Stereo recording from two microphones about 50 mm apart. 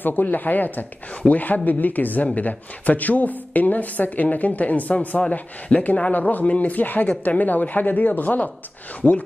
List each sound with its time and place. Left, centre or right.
0.0 s a woman's voice: left